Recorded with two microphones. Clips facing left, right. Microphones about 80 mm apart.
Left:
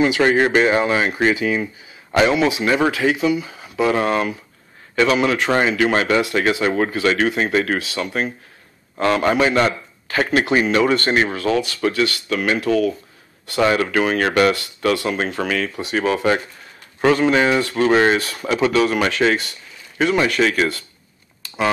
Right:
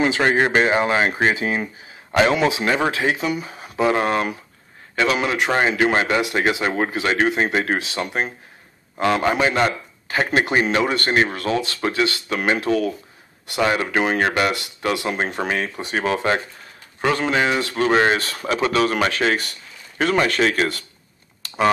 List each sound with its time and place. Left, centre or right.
0.3 s speech: right
9.3 s speech: right
17.5 s speech: left
17.7 s a man's voice: right